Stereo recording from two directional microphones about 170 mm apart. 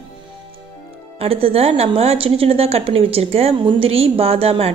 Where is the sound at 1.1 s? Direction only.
35° right (ahead or behind).